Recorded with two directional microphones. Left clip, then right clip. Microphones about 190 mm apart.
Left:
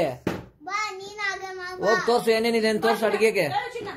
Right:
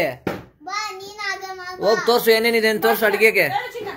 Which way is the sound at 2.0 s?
5° right (ahead or behind).